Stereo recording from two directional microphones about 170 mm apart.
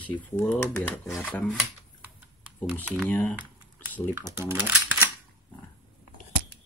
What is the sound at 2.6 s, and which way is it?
Speech, centre (ahead or behind).